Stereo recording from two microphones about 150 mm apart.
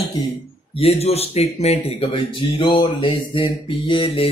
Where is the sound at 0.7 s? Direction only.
40° left (ahead or behind).